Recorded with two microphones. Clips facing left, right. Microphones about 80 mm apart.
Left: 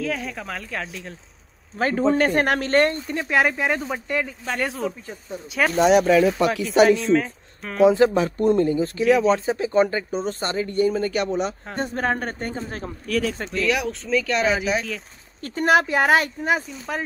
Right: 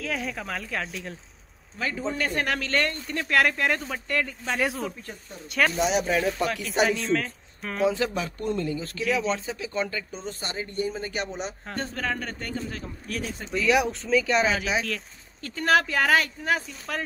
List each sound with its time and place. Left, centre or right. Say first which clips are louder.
0.0 s speech: left 3 dB; centre
1.8 s speech: left 9 dB; left
3.1 s speech: left 2 dB; centre
5.7 s speech: left 13 dB; left
6.9 s speech: left 7 dB; centre
7.9 s speech: left 10 dB; left
9.0 s speech: left 8 dB; centre
9.5 s speech: left 10 dB; left
10.4 s speech: left 8 dB; left
11.9 s speech: left 8 dB; left
13.1 s speech: left 9 dB; left
13.5 s speech: even; centre
15.6 s speech: left 4 dB; centre
16.4 s speech: left 4 dB; centre